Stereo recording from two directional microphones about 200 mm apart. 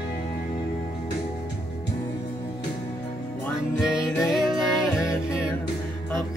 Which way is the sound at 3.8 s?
5° right (ahead or behind).